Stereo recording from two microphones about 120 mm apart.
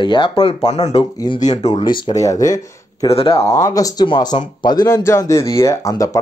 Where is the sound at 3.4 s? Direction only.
25° left (ahead or behind).